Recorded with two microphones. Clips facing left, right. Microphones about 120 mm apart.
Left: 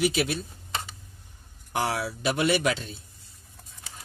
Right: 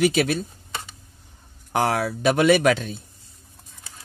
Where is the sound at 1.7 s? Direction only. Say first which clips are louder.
Right 6 dB; 60° right (ahead or behind).